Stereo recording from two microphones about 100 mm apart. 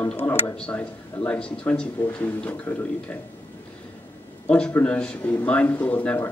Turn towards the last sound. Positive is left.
turn(degrees=15)  # may be behind; listen again after turning